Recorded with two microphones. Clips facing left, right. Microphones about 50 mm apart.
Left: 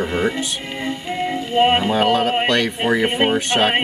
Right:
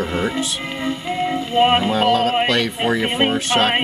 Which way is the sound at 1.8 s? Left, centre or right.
Centre.